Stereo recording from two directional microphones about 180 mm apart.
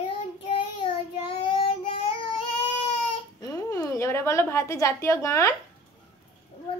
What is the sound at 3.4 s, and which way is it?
A woman's voice, 20° left (ahead or behind).